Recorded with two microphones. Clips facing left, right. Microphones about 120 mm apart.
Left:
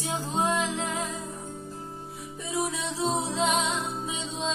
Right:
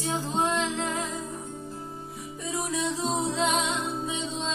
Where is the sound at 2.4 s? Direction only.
Centre (ahead or behind).